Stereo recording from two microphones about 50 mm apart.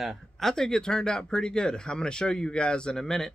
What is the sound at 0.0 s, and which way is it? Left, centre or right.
A man's voice, centre.